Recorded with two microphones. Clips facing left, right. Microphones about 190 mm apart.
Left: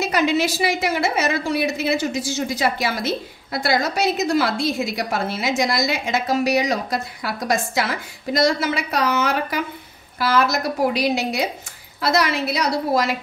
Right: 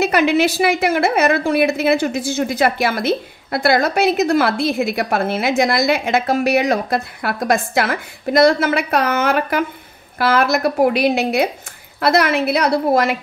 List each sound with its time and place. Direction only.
0.0 s a woman's voice: 60° right (ahead or behind)